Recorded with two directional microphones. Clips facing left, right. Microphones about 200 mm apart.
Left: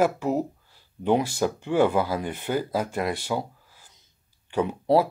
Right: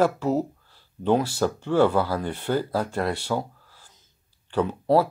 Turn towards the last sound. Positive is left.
turn(degrees=15)  # may be behind; listen again after turning